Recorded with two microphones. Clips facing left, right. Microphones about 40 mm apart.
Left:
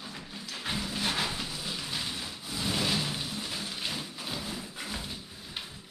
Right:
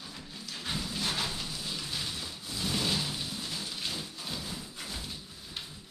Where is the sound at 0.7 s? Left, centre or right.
Centre.